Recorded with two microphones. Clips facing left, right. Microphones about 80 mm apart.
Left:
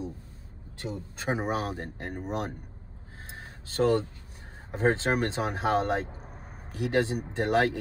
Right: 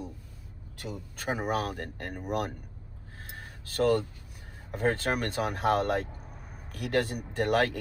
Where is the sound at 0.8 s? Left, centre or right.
Left.